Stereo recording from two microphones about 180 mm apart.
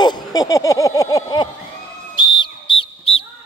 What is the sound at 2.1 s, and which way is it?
Whistle, 25° left (ahead or behind).